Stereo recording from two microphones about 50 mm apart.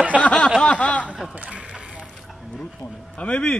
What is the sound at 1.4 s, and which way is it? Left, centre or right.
Speech, right.